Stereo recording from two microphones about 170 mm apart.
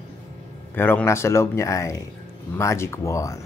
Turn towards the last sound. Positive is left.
turn(degrees=20)  # may be behind; listen again after turning